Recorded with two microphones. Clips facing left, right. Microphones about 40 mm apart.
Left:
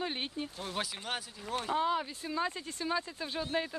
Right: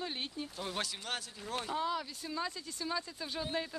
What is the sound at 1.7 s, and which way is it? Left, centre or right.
Speech, left.